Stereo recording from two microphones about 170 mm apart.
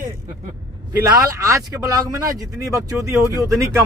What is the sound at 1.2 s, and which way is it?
Speech, 20° right (ahead or behind).